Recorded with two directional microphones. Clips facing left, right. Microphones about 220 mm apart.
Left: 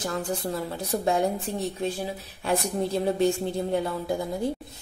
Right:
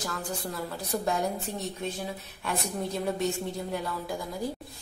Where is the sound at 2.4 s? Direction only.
30° left (ahead or behind).